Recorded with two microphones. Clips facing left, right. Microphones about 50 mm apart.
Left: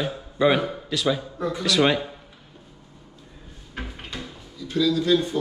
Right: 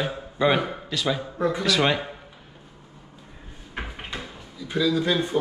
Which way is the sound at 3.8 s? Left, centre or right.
Right.